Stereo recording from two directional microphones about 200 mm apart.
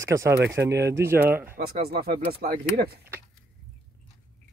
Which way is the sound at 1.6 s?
50° right (ahead or behind).